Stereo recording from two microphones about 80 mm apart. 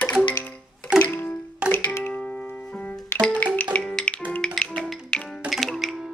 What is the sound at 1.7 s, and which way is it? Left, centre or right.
Music, left.